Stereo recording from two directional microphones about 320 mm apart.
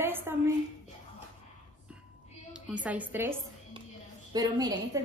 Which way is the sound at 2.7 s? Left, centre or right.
Centre.